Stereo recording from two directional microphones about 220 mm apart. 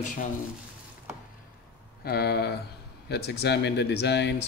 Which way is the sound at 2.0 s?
45° left (ahead or behind).